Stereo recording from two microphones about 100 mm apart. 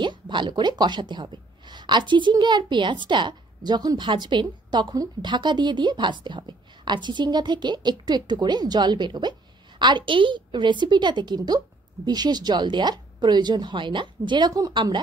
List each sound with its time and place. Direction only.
0.0 s a woman's voice: 50° right (ahead or behind)